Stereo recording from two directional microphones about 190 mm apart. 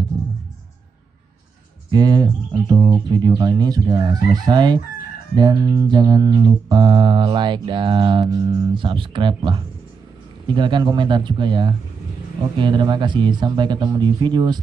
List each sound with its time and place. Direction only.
1.9 s mantra: 20° right (ahead or behind)